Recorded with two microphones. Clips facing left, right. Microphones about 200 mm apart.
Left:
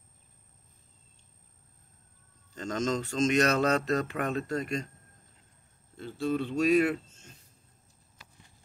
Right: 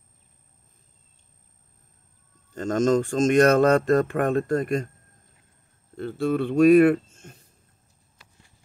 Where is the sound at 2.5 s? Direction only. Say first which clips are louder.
Right 9 dB; 50° right (ahead or behind).